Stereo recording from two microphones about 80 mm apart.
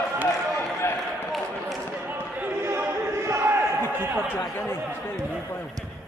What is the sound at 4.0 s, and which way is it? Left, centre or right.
Chatter, right.